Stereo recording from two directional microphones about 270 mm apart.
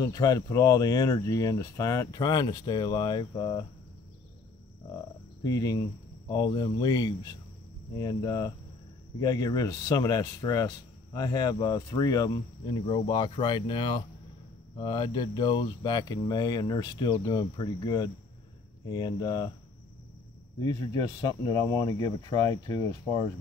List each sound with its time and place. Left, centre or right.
0.0 s speech: centre
5.4 s speech: centre
20.5 s speech: centre